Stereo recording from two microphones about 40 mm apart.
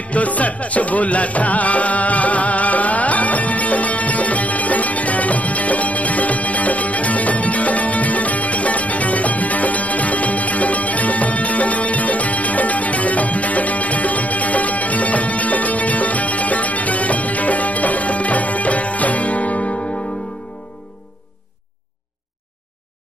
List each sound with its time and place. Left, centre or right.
0.0 s music: left